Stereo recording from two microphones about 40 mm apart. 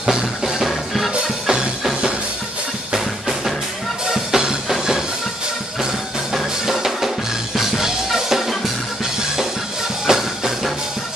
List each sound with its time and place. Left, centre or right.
0.0 s music: centre
1.2 s music: centre
4.1 s music: centre
6.3 s music: centre
10.0 s music: centre